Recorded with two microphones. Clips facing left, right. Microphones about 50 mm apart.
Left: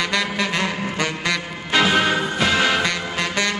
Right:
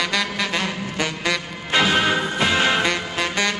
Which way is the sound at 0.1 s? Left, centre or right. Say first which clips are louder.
Left 1 dB; centre.